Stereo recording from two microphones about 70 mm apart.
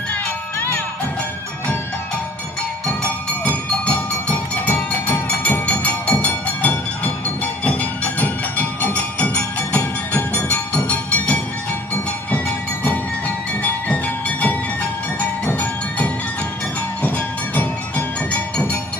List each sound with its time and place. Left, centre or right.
3.4 s music: centre
15.4 s music: left
17.6 s music: left